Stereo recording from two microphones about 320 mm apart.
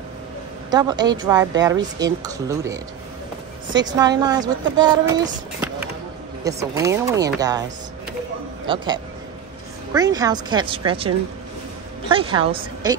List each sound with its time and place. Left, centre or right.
0.7 s speech: centre
8.6 s speech: centre
12.1 s speech: centre